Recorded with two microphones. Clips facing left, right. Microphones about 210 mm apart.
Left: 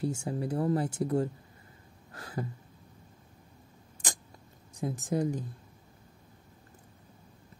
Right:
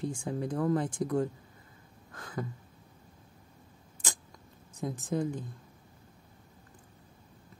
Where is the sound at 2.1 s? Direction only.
30° left (ahead or behind).